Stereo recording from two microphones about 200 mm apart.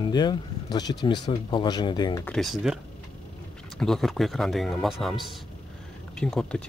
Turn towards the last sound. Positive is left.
turn(degrees=5)  # may be behind; listen again after turning